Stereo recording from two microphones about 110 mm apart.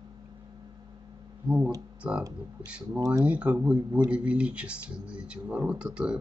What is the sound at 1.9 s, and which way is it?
Speech, 10° right (ahead or behind).